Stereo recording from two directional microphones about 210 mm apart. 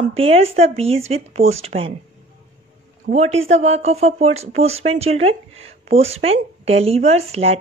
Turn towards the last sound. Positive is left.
turn(degrees=-30)  # may be behind; listen again after turning